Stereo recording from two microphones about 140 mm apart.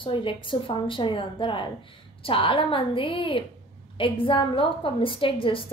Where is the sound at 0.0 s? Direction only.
35° left (ahead or behind).